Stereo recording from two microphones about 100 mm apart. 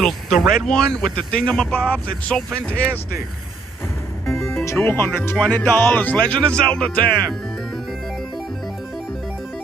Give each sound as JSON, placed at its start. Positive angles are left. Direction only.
{"t": 0.0, "sound": "speech", "side_deg": 5}
{"t": 4.3, "sound": "music", "side_deg": 5}
{"t": 4.6, "sound": "speech", "side_deg": 25}